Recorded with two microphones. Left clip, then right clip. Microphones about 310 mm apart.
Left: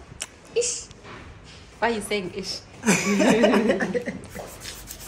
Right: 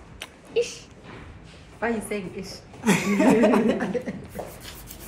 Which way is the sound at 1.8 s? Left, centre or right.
Left.